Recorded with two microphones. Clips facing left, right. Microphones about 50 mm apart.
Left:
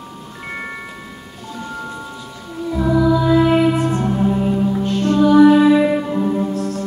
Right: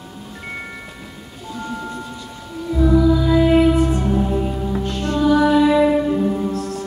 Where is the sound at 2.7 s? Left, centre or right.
Centre.